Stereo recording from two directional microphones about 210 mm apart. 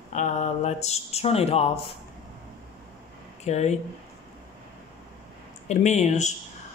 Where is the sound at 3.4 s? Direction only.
30° left (ahead or behind).